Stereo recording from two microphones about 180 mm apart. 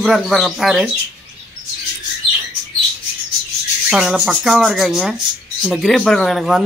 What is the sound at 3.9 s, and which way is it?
Speech, 5° right (ahead or behind).